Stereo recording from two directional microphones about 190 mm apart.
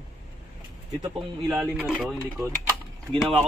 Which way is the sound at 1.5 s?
5° right (ahead or behind).